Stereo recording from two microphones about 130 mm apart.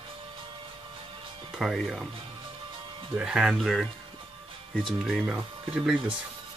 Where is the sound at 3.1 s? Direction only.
5° right (ahead or behind).